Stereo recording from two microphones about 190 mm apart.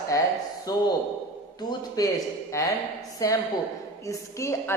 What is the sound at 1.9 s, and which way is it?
A woman's voice, 20° left (ahead or behind).